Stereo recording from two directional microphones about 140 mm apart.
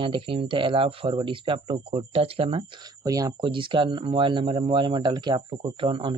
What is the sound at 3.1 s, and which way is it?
Speech, 25° right (ahead or behind).